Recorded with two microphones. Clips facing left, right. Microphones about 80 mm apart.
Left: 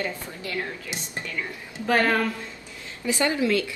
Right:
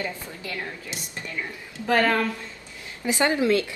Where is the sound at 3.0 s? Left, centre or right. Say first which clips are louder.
Right 2 dB; right.